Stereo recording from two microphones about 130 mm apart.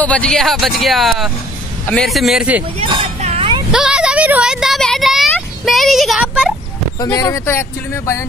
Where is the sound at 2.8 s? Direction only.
50° right (ahead or behind).